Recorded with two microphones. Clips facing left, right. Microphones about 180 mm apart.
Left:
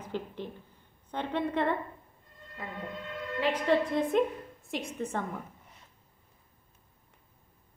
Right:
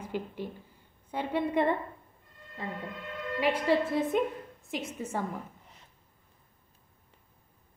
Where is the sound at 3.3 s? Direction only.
10° right (ahead or behind).